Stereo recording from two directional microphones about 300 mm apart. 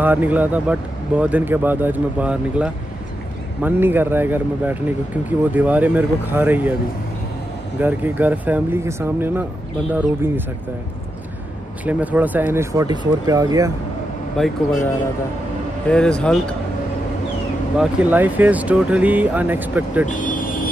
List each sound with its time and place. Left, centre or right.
0.0 s speech: centre
7.8 s speech: centre
11.8 s speech: centre
14.3 s speech: centre
15.9 s speech: centre
17.7 s speech: centre
20.1 s vehicle: left